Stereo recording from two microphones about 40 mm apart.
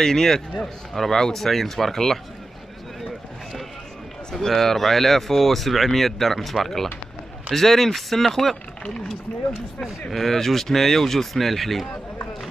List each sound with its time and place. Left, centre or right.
0.0 s speech: centre
4.3 s speech: centre
9.8 s speech: centre